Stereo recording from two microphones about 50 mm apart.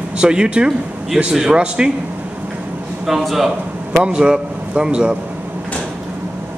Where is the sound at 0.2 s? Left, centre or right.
Centre.